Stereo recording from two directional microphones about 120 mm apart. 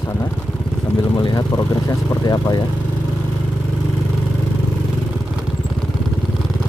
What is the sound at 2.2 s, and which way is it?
Speech, 35° left (ahead or behind).